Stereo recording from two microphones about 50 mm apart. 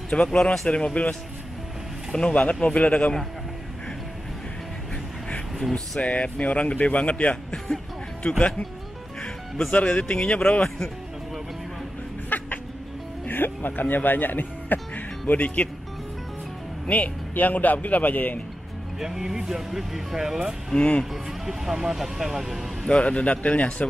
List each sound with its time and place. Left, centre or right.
0.1 s speech: left
2.1 s speech: centre
5.9 s speech: left
7.5 s music: centre
9.2 s music: centre
9.8 s speech: centre
12.3 s cat: left
13.3 s speech: left
16.8 s a man's voice: left
18.9 s speech: centre
20.7 s speech: centre
21.0 s speech: centre
22.8 s speech: left